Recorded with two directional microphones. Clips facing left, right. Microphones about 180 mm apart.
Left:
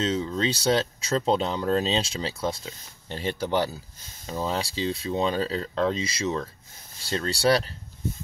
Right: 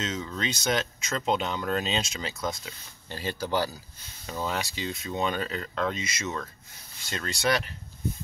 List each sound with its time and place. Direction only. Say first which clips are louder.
0.0 s speech: left 6 dB; 30° left (ahead or behind)